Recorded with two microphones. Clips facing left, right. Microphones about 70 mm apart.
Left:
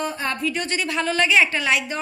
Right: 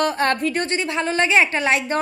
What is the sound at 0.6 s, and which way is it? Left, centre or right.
A woman's voice, right.